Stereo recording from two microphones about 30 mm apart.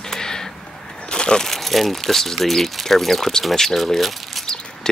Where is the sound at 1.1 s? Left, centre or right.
Left.